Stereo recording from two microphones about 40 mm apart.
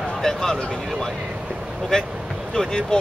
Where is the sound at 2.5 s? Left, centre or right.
Centre.